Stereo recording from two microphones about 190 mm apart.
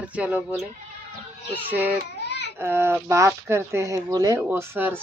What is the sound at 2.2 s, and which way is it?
Baby cry, 60° left (ahead or behind).